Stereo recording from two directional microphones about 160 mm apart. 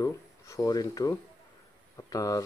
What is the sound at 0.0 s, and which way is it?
Speech, 20° left (ahead or behind).